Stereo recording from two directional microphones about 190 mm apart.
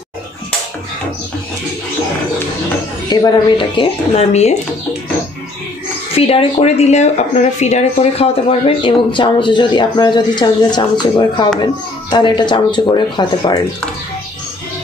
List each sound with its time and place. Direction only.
3.1 s speech: 25° left (ahead or behind)
6.1 s speech: 30° left (ahead or behind)